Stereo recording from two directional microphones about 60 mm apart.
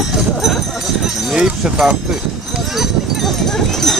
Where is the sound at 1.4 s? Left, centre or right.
Centre.